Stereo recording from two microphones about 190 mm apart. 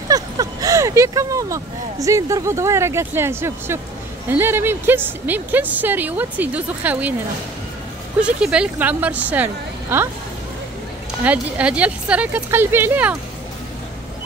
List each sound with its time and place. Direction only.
0.1 s a woman's voice: 20° right (ahead or behind)
8.2 s a woman's voice: 5° right (ahead or behind)
11.2 s a woman's voice: 5° right (ahead or behind)